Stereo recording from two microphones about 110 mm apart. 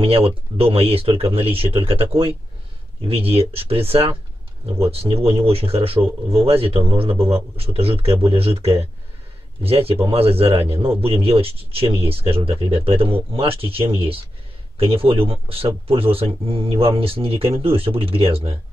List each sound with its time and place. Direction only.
0.0 s speech: 60° right (ahead or behind)
3.1 s speech: 60° right (ahead or behind)